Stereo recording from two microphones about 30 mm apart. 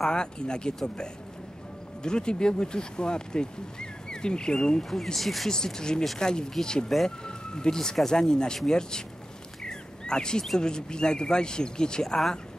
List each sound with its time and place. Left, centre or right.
0.0 s speech: left
4.8 s speech: centre
5.5 s speech: left
7.2 s police car: left
7.7 s speech: centre
9.6 s bird: left
10.6 s speech: left